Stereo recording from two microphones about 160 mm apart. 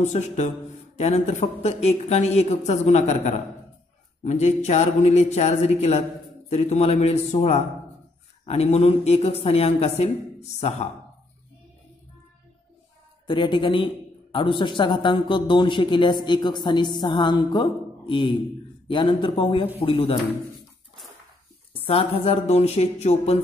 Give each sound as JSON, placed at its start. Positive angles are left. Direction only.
{"t": 0.0, "sound": "a woman's voice", "side_deg": 45}
{"t": 13.3, "sound": "a woman's voice", "side_deg": 30}
{"t": 21.7, "sound": "a woman's voice", "side_deg": 35}